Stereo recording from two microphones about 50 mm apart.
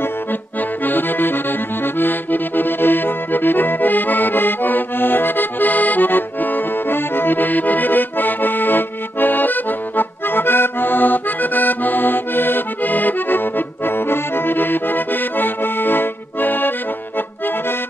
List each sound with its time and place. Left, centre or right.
0.0 s accordion: left